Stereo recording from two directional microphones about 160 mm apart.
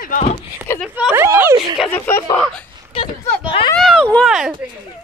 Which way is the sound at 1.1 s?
15° right (ahead or behind).